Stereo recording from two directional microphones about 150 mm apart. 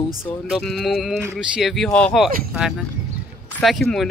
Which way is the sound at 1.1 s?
10° right (ahead or behind).